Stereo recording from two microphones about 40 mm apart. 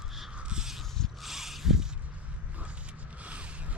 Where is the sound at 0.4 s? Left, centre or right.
Right.